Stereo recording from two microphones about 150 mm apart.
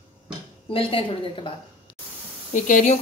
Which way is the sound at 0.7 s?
35° left (ahead or behind).